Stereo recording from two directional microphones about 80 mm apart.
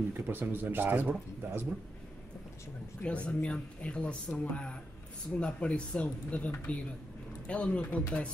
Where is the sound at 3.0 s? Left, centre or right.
Centre.